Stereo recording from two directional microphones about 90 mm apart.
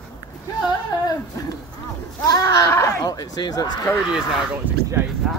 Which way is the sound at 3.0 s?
45° left (ahead or behind).